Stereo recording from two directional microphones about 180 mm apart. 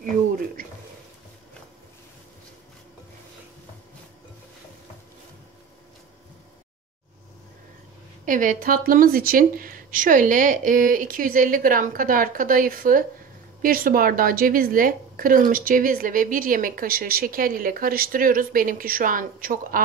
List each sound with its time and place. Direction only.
8.3 s a woman's voice: 50° right (ahead or behind)